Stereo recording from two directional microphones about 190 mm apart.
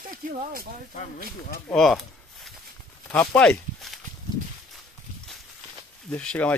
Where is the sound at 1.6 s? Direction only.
Centre (ahead or behind).